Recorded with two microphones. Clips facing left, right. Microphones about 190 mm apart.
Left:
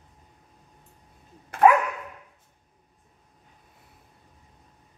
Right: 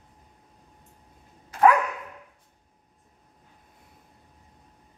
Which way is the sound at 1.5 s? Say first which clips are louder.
Left 2 dB; 60° left (ahead or behind).